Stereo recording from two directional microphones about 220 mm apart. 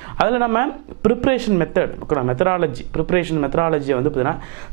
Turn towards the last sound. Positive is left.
turn(degrees=-15)  # may be behind; listen again after turning